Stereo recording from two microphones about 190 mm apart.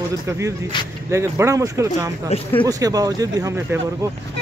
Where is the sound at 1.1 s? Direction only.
15° right (ahead or behind).